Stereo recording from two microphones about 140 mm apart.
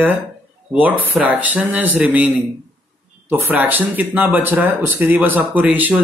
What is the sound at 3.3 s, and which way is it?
A man's voice, 15° right (ahead or behind).